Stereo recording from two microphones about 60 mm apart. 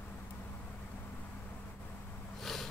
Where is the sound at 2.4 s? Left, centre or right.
Centre.